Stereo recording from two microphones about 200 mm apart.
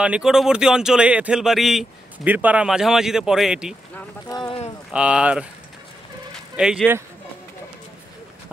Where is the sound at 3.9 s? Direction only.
15° left (ahead or behind).